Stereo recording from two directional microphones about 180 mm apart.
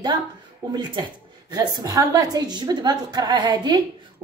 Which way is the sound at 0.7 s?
25° right (ahead or behind).